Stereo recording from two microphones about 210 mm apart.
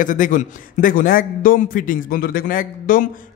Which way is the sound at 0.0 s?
40° left (ahead or behind).